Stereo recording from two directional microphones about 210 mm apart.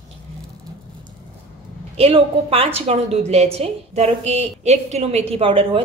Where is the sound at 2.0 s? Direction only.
25° right (ahead or behind).